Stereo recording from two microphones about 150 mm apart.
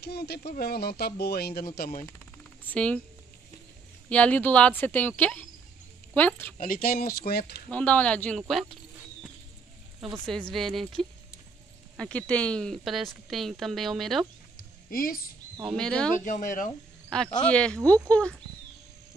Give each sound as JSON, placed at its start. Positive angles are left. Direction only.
{"t": 0.0, "sound": "speech", "side_deg": 90}
{"t": 2.6, "sound": "speech", "side_deg": 10}
{"t": 4.1, "sound": "cricket", "side_deg": 10}
{"t": 6.6, "sound": "speech", "side_deg": 75}
{"t": 7.7, "sound": "cricket", "side_deg": 10}
{"t": 8.4, "sound": "speech", "side_deg": 0}
{"t": 10.2, "sound": "speech", "side_deg": 5}
{"t": 14.6, "sound": "a sound", "side_deg": 75}
{"t": 15.6, "sound": "speech", "side_deg": 5}
{"t": 16.3, "sound": "speech", "side_deg": 60}
{"t": 17.1, "sound": "speech", "side_deg": 5}
{"t": 17.5, "sound": "cricket", "side_deg": 5}